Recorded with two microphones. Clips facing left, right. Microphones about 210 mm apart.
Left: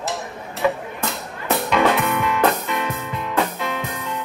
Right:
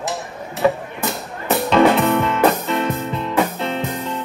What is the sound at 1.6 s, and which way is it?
Music, 30° right (ahead or behind).